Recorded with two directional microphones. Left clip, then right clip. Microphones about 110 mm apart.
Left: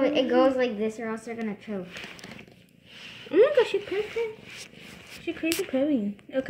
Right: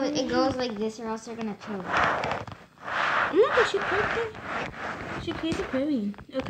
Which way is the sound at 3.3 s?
25° right (ahead or behind).